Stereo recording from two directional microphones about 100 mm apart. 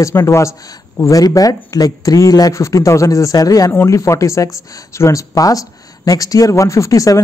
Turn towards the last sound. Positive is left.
turn(degrees=35)  # may be behind; listen again after turning